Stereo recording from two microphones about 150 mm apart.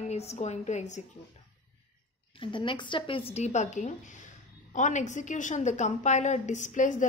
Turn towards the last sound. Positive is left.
turn(degrees=55)  # may be behind; listen again after turning